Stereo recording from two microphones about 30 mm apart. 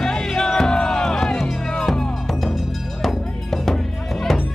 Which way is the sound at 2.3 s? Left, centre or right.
Centre.